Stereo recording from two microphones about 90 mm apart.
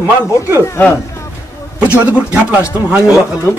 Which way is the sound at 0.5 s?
25° left (ahead or behind).